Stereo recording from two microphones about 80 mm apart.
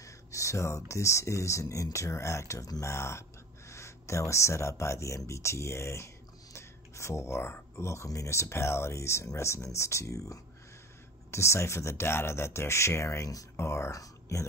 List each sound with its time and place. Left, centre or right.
0.0 s speech: left